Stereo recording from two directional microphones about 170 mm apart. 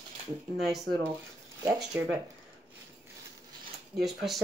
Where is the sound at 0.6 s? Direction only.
Centre (ahead or behind).